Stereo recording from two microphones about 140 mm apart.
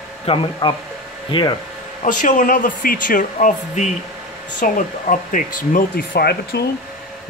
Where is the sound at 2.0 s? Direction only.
70° left (ahead or behind).